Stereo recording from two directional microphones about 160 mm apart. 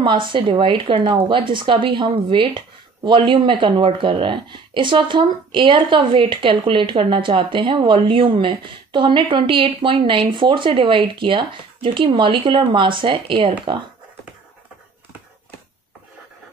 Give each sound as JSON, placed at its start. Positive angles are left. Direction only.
{"t": 0.0, "sound": "speech", "side_deg": -30}